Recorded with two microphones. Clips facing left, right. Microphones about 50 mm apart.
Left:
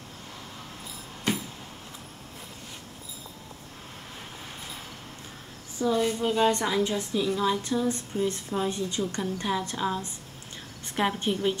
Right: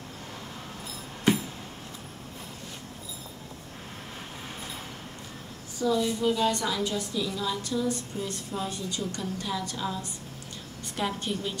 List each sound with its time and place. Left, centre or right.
5.8 s a woman's voice: left